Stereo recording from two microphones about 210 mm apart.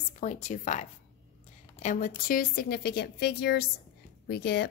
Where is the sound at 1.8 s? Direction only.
40° left (ahead or behind).